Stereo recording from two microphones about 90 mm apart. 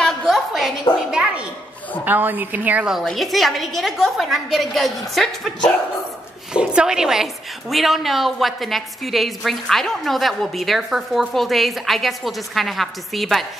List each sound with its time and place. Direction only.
0.0 s a sound: centre (ahead or behind)
2.0 s a woman's voice: 20° right (ahead or behind)
3.1 s a woman's voice: centre (ahead or behind)
6.5 s a woman's voice: 10° right (ahead or behind)